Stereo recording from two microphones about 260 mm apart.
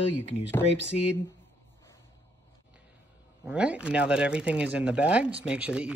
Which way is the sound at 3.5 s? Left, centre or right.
Centre.